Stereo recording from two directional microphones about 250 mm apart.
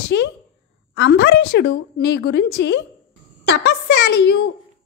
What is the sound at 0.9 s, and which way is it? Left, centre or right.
A woman's voice, left.